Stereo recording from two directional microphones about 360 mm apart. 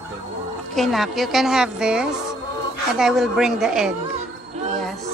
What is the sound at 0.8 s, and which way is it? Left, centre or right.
A woman's voice, centre.